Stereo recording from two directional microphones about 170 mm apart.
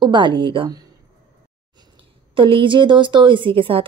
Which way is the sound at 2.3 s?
30° right (ahead or behind).